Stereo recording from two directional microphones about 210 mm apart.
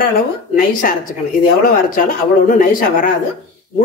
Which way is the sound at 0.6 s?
40° left (ahead or behind).